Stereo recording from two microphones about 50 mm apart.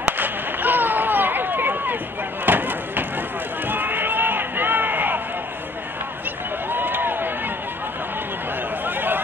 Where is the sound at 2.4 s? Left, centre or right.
Right.